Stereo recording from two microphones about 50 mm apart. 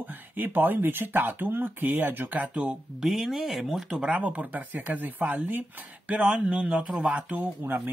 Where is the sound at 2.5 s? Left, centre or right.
Right.